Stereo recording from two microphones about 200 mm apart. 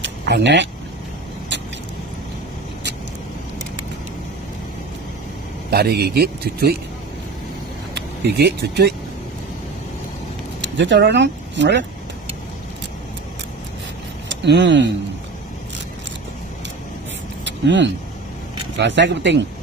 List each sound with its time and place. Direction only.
0.0 s vehicle: 60° right (ahead or behind)
5.7 s speech: 50° right (ahead or behind)
7.9 s speech: 55° right (ahead or behind)
10.6 s speech: 65° right (ahead or behind)
14.3 s speech: 60° right (ahead or behind)
17.5 s speech: 65° right (ahead or behind)